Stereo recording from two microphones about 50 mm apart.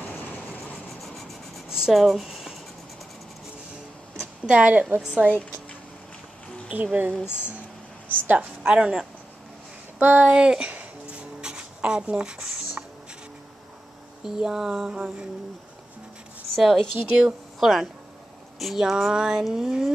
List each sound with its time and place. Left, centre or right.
0.1 s vehicle: left
1.7 s speech: centre
2.2 s writing: centre
4.5 s speech: right
5.3 s a sound: left
6.7 s a woman's voice: right
8.6 s speech: right
9.9 s speech: right
10.2 s speech: centre
10.7 s music: right
11.1 s music: centre
14.2 s a sound: centre
16.5 s speech: centre
18.8 s a sound: centre